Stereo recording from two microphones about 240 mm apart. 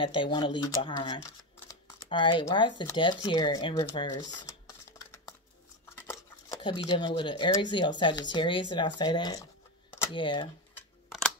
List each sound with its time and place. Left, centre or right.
0.0 s speech: centre
11.1 s scissors: centre